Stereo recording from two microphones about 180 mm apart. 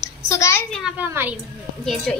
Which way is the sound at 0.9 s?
10° right (ahead or behind).